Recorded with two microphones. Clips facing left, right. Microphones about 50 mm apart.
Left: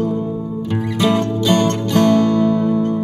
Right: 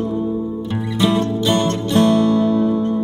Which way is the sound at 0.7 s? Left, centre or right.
Left.